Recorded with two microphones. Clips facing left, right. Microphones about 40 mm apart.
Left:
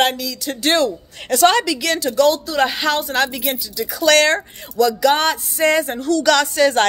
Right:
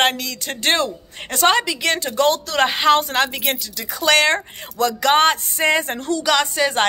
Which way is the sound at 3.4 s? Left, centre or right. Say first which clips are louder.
Left 1 dB; right.